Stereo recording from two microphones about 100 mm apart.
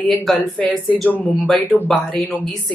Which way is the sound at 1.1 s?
20° left (ahead or behind).